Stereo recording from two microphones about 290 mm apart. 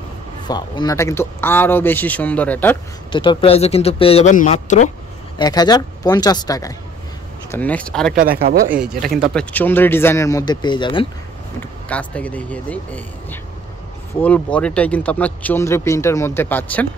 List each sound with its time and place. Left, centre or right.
0.5 s speech: centre
5.4 s speech: centre
8.2 s speech: right
8.6 s speech: centre
11.9 s speech: centre